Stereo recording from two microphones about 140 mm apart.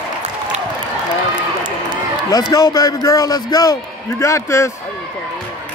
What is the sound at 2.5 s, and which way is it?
Speech, 25° left (ahead or behind).